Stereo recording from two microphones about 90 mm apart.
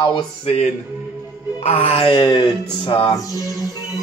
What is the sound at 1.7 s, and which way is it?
Music, 80° left.